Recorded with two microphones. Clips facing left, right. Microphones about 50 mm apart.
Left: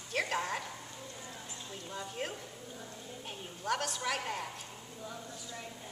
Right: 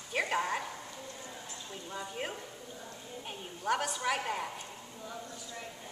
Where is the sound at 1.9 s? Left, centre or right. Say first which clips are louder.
Right 1 dB; centre.